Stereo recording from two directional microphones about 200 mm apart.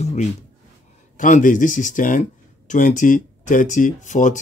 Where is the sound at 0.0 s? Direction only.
35° left (ahead or behind).